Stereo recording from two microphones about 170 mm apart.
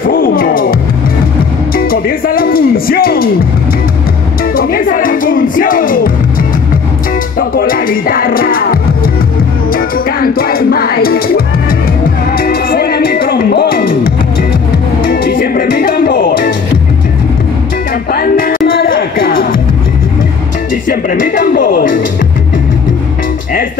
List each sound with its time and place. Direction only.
0.1 s music: 60° left (ahead or behind)
1.8 s music: 60° left (ahead or behind)
4.6 s music: 60° left (ahead or behind)
7.3 s music: 60° left (ahead or behind)
15.2 s music: 60° left (ahead or behind)
18.1 s music: 60° left (ahead or behind)
20.9 s music: 55° left (ahead or behind)